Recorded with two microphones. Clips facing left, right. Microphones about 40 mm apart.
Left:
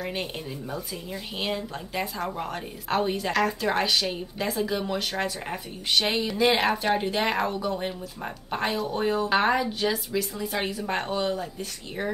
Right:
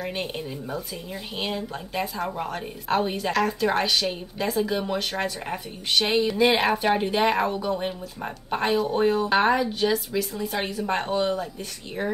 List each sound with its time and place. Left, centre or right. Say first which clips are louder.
0.0 s a woman's voice: right 2 dB; centre